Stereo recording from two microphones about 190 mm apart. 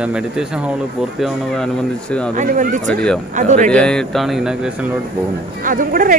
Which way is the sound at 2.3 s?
45° right (ahead or behind).